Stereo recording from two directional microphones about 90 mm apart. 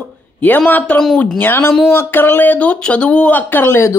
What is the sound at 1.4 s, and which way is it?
Speech, 25° left (ahead or behind).